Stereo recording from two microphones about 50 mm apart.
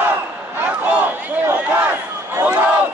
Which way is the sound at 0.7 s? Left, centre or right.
Right.